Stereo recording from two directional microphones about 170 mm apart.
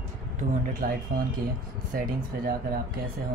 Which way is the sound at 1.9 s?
55° right (ahead or behind).